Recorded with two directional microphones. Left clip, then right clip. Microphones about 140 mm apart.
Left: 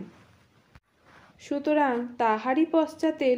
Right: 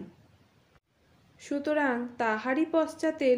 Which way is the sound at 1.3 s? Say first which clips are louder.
Left 4 dB; 30° left (ahead or behind).